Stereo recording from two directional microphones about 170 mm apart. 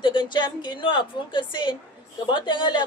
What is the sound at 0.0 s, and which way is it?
A woman's voice, 30° left (ahead or behind).